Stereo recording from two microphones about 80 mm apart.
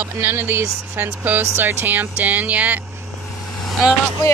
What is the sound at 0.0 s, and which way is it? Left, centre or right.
Speech, right.